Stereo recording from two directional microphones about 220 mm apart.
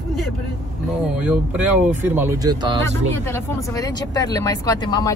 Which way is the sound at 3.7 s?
15° left (ahead or behind).